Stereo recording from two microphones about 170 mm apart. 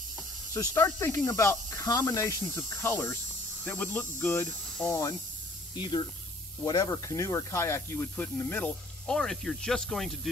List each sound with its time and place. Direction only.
0.6 s speech: 15° left (ahead or behind)